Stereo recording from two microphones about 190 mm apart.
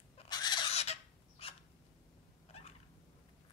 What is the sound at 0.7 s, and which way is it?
Chicken, 35° left (ahead or behind).